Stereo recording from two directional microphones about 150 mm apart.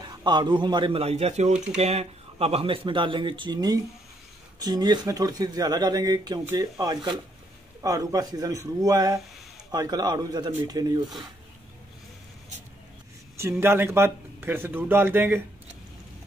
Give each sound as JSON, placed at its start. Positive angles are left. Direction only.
{"t": 0.0, "sound": "speech", "side_deg": -30}
{"t": 13.4, "sound": "speech", "side_deg": -15}